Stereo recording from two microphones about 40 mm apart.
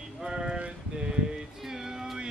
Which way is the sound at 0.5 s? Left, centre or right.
Right.